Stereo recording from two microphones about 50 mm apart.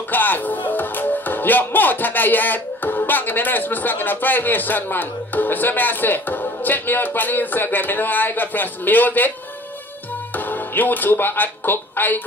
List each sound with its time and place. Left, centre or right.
0.1 s speech: left
10.3 s speech: left